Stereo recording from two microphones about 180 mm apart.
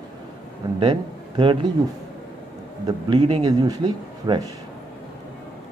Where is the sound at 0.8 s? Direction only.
25° right (ahead or behind).